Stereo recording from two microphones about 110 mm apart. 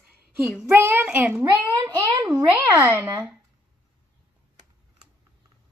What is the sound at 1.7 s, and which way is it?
A child's voice, 30° right (ahead or behind).